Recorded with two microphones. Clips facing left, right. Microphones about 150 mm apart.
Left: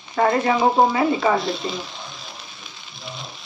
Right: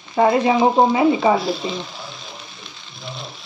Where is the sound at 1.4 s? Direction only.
Centre (ahead or behind).